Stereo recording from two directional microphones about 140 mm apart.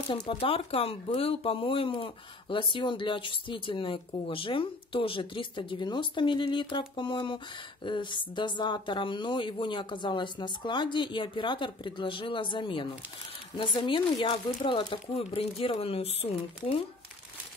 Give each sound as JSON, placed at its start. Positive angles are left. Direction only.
{"t": 0.1, "sound": "speech", "side_deg": 35}